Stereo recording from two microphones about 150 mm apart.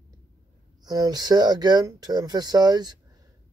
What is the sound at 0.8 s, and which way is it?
Speech, 25° right (ahead or behind).